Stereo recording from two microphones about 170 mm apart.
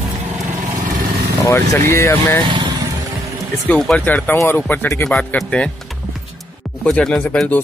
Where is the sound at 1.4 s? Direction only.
15° left (ahead or behind).